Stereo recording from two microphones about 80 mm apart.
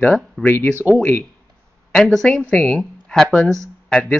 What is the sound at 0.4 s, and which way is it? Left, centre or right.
Speech, left.